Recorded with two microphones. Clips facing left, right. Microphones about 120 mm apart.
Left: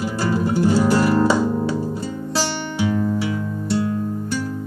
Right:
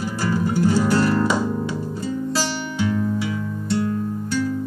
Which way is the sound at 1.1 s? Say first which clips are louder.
Left 3 dB; 30° left (ahead or behind).